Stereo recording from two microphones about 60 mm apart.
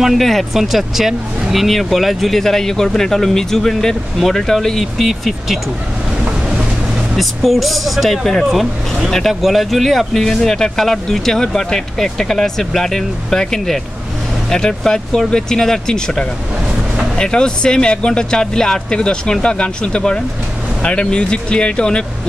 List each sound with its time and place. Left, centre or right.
0.0 s speech: centre
7.2 s speech: centre